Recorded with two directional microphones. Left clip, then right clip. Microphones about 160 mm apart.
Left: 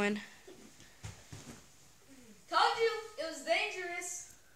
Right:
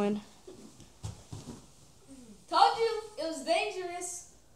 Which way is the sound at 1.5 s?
20° left (ahead or behind).